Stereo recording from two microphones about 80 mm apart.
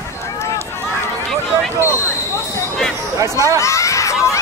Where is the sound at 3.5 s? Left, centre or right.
Left.